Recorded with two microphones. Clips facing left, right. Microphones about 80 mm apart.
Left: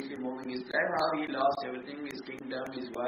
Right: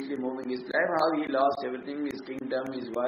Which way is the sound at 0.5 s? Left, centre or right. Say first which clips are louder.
Right 4 dB; right.